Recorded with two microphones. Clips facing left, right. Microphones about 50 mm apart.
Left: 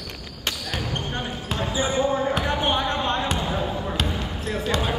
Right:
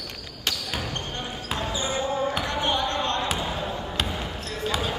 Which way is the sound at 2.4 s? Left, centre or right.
Centre.